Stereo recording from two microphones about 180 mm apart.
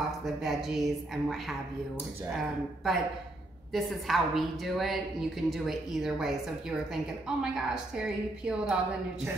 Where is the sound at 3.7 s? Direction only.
Centre (ahead or behind).